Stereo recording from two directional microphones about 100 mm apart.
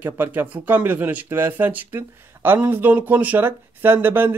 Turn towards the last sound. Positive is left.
turn(degrees=-20)  # may be behind; listen again after turning